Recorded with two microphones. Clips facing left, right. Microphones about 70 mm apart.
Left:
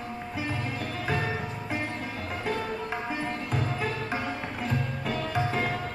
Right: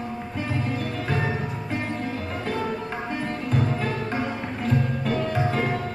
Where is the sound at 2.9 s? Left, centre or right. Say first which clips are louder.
Right 2 dB; centre.